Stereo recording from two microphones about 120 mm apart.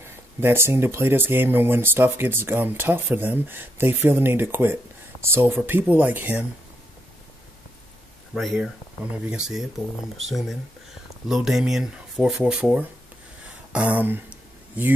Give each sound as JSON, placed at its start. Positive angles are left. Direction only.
{"t": 0.4, "sound": "speech", "side_deg": -20}
{"t": 8.5, "sound": "speech", "side_deg": -10}
{"t": 13.7, "sound": "a sound", "side_deg": -10}